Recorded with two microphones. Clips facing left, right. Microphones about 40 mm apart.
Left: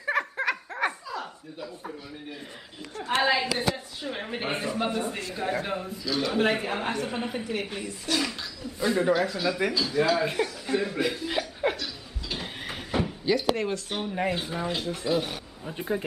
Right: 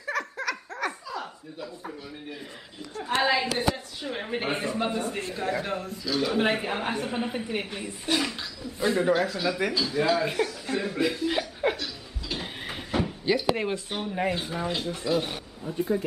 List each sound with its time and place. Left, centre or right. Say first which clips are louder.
0.0 s laughter: left 3 dB; left
1.1 s chuckle: even; centre
3.2 s a woman's voice: even; centre
6.0 s a woman's voice: even; centre
8.3 s a sound: even; centre
13.2 s speech: even; centre
13.9 s a woman's voice: even; centre
15.7 s speech: right 3 dB; left